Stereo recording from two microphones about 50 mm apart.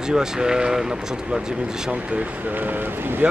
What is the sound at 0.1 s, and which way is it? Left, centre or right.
Speech, centre.